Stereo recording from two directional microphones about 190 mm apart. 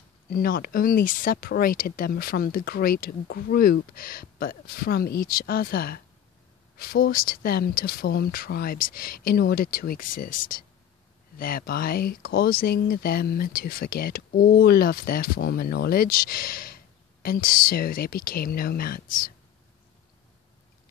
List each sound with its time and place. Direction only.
0.3 s speech: 50° left (ahead or behind)